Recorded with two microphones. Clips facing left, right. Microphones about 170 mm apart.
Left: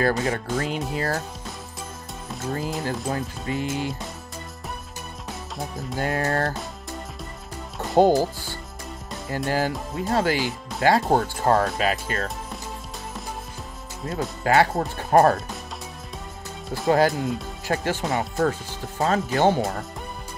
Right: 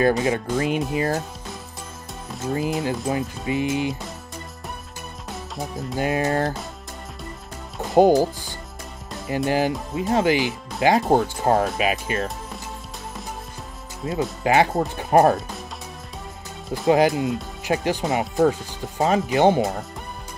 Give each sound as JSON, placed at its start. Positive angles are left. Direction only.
{"t": 0.2, "sound": "speech", "side_deg": -15}
{"t": 2.4, "sound": "speech", "side_deg": -15}
{"t": 5.9, "sound": "speech", "side_deg": -15}
{"t": 7.9, "sound": "speech", "side_deg": -15}
{"t": 14.0, "sound": "speech", "side_deg": -20}
{"t": 16.9, "sound": "speech", "side_deg": -15}